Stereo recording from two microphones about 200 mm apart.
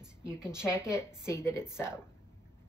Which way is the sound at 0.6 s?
15° left (ahead or behind).